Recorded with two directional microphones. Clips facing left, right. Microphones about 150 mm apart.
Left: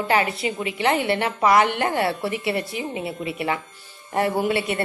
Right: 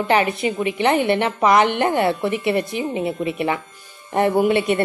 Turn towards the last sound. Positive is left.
turn(degrees=-20)  # may be behind; listen again after turning